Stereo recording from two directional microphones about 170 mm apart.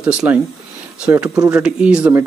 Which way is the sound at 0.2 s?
15° right (ahead or behind).